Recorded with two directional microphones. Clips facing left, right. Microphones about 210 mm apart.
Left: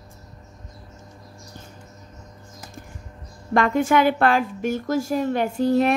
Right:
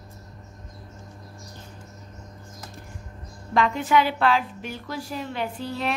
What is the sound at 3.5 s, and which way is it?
A woman's voice, 50° left (ahead or behind).